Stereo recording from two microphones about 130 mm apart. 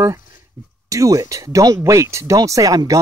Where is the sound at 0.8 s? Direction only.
25° right (ahead or behind).